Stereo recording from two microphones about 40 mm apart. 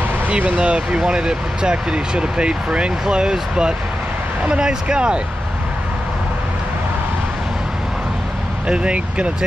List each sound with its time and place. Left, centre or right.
0.6 s speech: right
8.6 s speech: right